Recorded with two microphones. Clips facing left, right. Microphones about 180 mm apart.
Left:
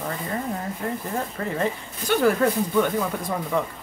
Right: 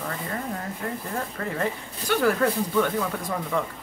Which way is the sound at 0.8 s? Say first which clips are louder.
Left 3 dB; 20° left (ahead or behind).